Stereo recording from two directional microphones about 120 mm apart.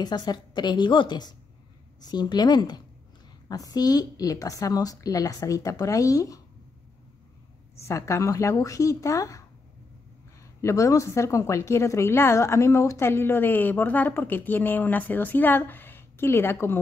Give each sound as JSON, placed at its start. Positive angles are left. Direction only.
{"t": 0.0, "sound": "a woman's voice", "side_deg": 35}
{"t": 7.8, "sound": "a woman's voice", "side_deg": 25}
{"t": 10.6, "sound": "a woman's voice", "side_deg": 25}